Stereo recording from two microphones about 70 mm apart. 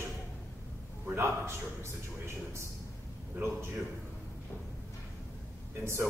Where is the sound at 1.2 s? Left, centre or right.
Right.